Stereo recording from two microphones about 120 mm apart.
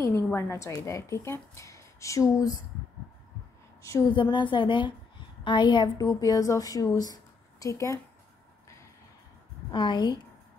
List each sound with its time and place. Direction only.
0.0 s a woman's voice: 25° left (ahead or behind)
4.1 s a woman's voice: 40° left (ahead or behind)
9.7 s a woman's voice: 40° left (ahead or behind)